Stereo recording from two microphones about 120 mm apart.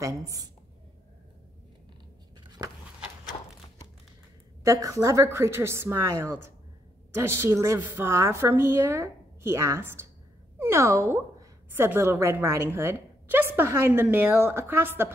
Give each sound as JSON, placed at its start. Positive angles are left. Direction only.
{"t": 0.0, "sound": "a woman's voice", "side_deg": -30}
{"t": 4.6, "sound": "a woman's voice", "side_deg": -30}